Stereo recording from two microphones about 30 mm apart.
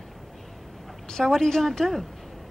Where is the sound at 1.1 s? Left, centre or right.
Centre.